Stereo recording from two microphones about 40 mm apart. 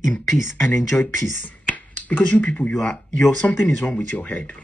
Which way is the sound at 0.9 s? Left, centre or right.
Left.